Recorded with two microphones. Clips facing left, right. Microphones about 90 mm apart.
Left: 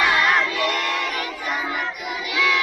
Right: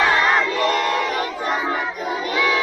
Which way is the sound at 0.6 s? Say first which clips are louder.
Right 4 dB; 35° right (ahead or behind).